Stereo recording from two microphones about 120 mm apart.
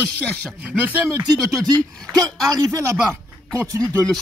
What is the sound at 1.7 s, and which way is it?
Speech, 30° right (ahead or behind).